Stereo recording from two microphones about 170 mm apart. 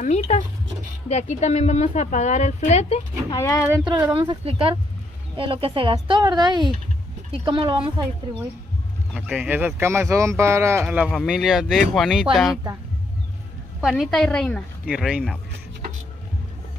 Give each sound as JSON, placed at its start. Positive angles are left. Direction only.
{"t": 0.0, "sound": "speech", "side_deg": 40}
{"t": 3.3, "sound": "speech", "side_deg": 15}
{"t": 4.2, "sound": "speech", "side_deg": -30}
{"t": 9.1, "sound": "speech", "side_deg": -5}
{"t": 11.1, "sound": "a woman's voice", "side_deg": 0}
{"t": 13.7, "sound": "a woman's voice", "side_deg": -5}